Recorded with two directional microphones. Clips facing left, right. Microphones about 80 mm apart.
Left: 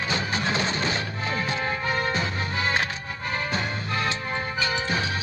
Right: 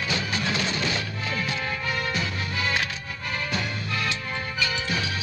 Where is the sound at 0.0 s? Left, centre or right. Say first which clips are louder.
Left 1 dB; left.